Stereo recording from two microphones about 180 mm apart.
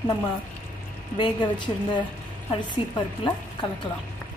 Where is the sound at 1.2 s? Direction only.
25° left (ahead or behind).